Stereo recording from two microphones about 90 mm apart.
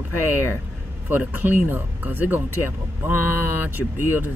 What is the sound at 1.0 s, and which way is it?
Speech, 20° right (ahead or behind).